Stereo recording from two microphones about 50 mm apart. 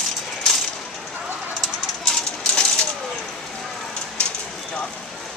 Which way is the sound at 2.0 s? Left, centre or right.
Centre.